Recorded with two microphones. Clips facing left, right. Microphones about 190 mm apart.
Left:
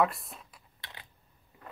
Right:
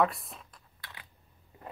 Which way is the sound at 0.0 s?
Centre (ahead or behind).